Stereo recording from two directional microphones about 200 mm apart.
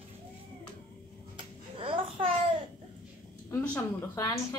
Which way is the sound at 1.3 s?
25° right (ahead or behind).